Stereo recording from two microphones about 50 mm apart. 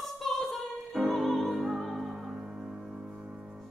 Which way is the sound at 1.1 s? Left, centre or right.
Centre.